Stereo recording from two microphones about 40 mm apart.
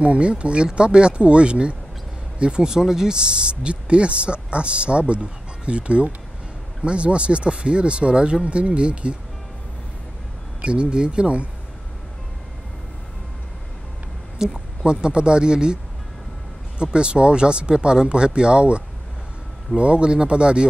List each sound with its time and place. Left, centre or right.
0.0 s speech: right
10.6 s speech: right
14.4 s a sound: centre
14.9 s speech: right
19.8 s speech: right